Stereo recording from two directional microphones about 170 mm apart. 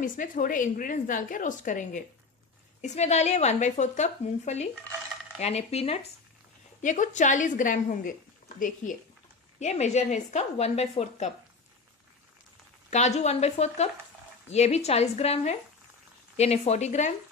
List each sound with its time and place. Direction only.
0.0 s a woman's voice: 50° left (ahead or behind)
12.9 s speech: 40° left (ahead or behind)